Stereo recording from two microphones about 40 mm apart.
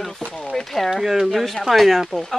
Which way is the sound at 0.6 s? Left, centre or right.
Centre.